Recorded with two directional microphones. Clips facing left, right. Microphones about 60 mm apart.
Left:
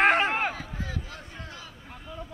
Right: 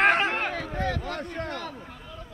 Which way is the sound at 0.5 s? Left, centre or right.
Right.